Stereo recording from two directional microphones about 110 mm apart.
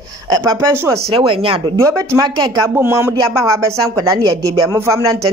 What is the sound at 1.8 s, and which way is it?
Speech, 25° right (ahead or behind).